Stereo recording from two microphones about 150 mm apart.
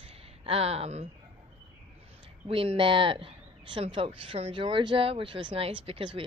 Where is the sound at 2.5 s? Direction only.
35° right (ahead or behind).